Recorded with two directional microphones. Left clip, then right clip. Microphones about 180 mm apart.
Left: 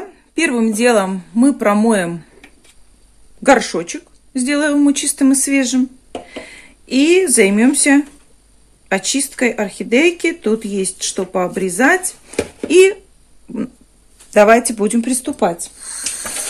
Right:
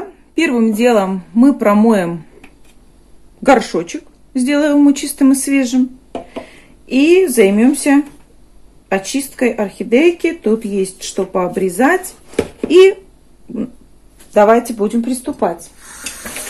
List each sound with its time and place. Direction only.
0.3 s speech: 15° left (ahead or behind)
3.4 s speech: 15° left (ahead or behind)
14.3 s speech: 45° left (ahead or behind)